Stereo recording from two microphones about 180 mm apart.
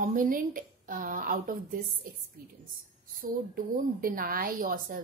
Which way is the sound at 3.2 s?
50° right (ahead or behind).